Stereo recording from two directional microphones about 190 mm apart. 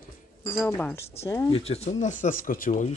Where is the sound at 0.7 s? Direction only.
10° left (ahead or behind).